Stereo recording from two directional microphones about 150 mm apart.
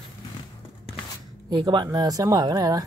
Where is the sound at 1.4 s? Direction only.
30° right (ahead or behind).